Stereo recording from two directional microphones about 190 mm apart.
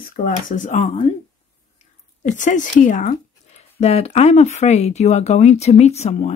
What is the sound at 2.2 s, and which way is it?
Speech, 40° left (ahead or behind).